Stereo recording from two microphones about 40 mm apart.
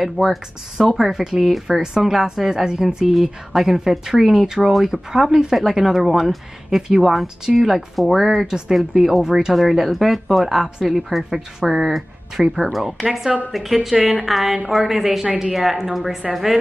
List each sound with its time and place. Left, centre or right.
0.0 s speech: centre
3.1 s speech: centre
8.5 s speech: centre
8.7 s speech: centre
9.5 s speech: centre